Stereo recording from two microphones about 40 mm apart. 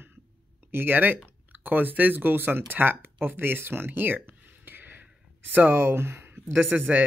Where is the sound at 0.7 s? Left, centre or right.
Right.